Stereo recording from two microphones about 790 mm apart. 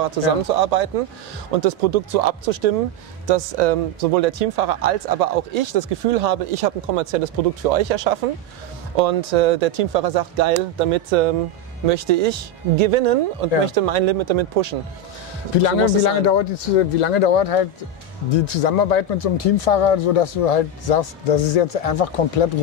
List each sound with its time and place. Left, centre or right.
0.0 s speech: right
11.8 s speech: right
15.6 s speech: left